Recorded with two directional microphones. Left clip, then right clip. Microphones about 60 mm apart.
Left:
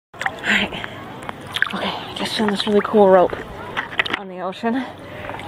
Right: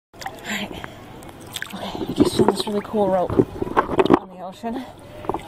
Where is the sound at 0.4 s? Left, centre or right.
Right.